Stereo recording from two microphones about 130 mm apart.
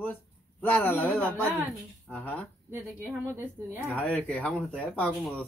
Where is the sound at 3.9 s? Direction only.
10° left (ahead or behind).